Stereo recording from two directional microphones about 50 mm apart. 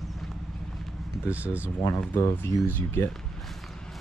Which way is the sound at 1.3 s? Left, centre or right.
Right.